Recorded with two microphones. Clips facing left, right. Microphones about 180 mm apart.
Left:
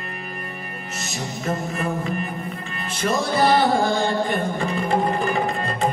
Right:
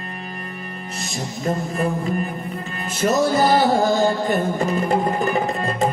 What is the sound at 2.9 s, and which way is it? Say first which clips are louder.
Music: right 4 dB; 45° right (ahead or behind).